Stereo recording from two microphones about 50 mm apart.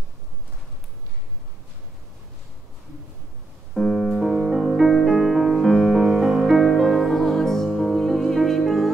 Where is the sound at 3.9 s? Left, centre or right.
Centre.